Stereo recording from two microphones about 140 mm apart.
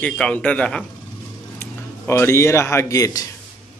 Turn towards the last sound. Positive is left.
turn(degrees=25)  # may be behind; listen again after turning